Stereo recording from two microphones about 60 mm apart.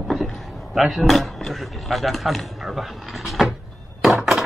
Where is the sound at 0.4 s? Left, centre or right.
Centre.